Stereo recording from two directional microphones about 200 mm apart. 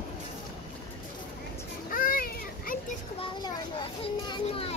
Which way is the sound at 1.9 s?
45° left (ahead or behind).